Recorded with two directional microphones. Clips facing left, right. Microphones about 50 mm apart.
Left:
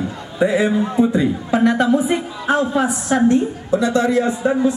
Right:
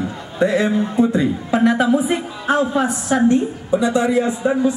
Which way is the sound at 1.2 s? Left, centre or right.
Centre.